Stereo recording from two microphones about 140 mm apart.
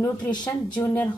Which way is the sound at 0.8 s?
15° left (ahead or behind).